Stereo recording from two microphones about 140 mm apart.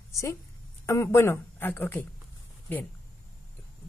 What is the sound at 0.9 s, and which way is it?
Speech, 20° left (ahead or behind).